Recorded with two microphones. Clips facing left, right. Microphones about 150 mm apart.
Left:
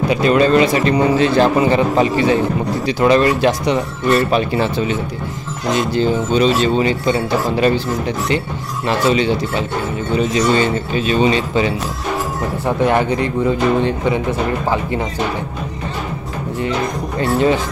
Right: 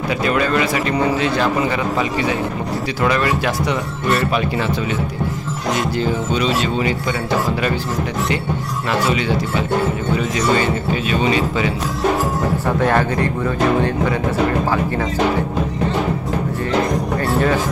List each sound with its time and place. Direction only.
0.1 s speech: 25° left (ahead or behind)
5.9 s speech: 30° left (ahead or behind)
10.1 s speech: 25° left (ahead or behind)
12.8 s speech: 20° left (ahead or behind)